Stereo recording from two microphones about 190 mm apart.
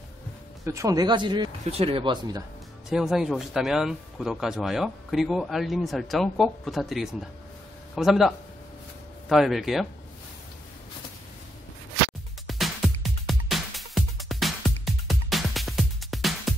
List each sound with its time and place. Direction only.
0.7 s speech: 15° right (ahead or behind)
2.9 s speech: centre (ahead or behind)
12.4 s music: centre (ahead or behind)